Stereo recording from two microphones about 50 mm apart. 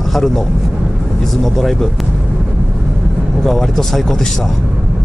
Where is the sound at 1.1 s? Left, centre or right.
Centre.